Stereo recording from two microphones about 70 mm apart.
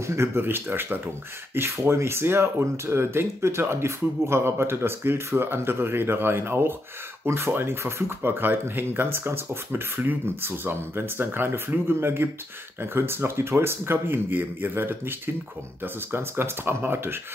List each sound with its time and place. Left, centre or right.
0.0 s speech: right